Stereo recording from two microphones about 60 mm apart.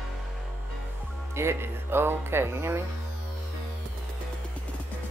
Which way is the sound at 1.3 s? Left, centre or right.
Right.